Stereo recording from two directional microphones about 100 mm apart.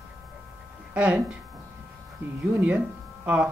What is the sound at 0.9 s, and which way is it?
Speech, 10° right (ahead or behind).